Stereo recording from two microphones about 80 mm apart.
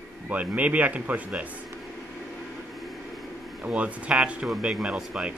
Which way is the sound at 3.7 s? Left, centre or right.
Centre.